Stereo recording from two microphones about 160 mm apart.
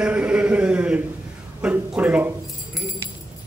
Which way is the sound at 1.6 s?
10° right (ahead or behind).